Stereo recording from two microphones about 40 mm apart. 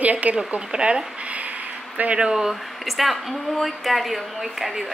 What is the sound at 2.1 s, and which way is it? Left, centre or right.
Speech, right.